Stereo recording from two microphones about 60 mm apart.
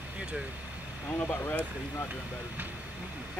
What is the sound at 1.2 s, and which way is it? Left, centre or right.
Speech, left.